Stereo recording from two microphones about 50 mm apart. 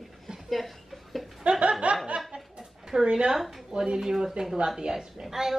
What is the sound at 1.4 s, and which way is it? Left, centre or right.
Snicker, right.